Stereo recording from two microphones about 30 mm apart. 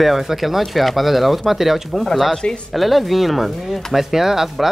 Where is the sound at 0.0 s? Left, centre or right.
Centre.